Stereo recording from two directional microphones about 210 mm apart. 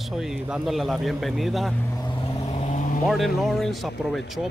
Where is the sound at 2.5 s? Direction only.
35° left (ahead or behind).